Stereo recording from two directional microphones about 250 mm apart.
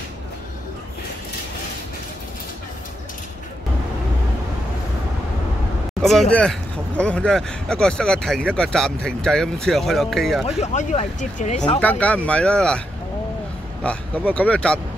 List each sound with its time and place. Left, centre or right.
6.0 s speech: centre
10.6 s speech: left
11.8 s speech: centre
13.8 s speech: centre